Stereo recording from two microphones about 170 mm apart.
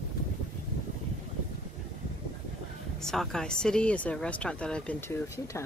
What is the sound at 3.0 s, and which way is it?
Speech, centre (ahead or behind).